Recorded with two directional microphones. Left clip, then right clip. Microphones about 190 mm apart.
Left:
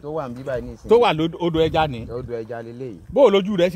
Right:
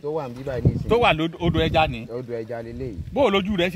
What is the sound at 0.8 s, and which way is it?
Speech, 70° left (ahead or behind).